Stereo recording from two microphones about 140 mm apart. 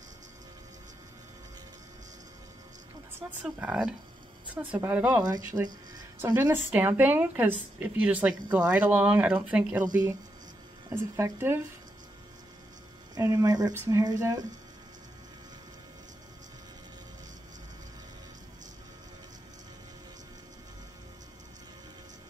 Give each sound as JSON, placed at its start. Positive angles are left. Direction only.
{"t": 3.2, "sound": "a woman's voice", "side_deg": -15}
{"t": 10.9, "sound": "a woman's voice", "side_deg": -20}
{"t": 13.1, "sound": "speech", "side_deg": -20}